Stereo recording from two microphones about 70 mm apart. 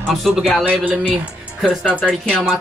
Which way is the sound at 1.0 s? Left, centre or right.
Centre.